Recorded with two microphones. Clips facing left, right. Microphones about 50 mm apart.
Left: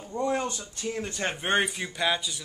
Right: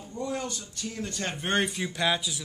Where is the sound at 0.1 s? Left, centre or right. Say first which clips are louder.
Left 5 dB; left; by 1.7 s centre.